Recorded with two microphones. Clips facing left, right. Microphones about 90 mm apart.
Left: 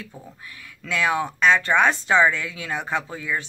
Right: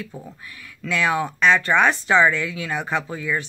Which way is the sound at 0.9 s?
15° left (ahead or behind).